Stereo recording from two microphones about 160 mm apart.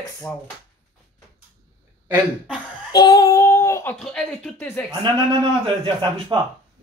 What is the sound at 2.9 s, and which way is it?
Speech, 25° left (ahead or behind).